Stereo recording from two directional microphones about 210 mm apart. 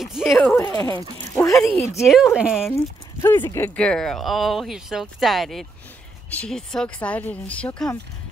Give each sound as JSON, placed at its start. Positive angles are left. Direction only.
{"t": 0.0, "sound": "speech", "side_deg": 0}
{"t": 0.6, "sound": "speech", "side_deg": 15}
{"t": 1.2, "sound": "a sound", "side_deg": 15}
{"t": 1.5, "sound": "speech", "side_deg": 0}
{"t": 2.7, "sound": "speech", "side_deg": 15}